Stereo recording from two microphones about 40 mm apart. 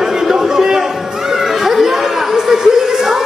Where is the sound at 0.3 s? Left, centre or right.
Centre.